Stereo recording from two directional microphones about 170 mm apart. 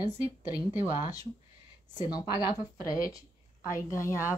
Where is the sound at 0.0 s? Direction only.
20° left (ahead or behind).